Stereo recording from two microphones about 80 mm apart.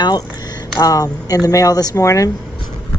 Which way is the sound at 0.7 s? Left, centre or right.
Left.